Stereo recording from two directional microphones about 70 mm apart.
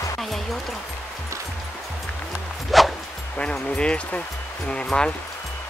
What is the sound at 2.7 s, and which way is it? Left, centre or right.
Music, centre.